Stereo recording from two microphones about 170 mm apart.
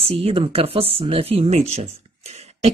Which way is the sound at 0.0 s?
35° right (ahead or behind).